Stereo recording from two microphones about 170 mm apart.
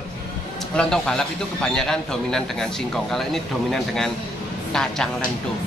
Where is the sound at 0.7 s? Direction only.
5° left (ahead or behind).